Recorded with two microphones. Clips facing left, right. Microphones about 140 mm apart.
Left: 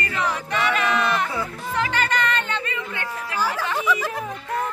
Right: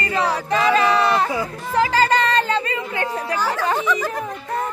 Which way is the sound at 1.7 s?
35° right (ahead or behind).